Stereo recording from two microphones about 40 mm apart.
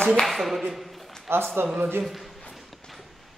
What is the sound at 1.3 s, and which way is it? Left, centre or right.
Speech, right.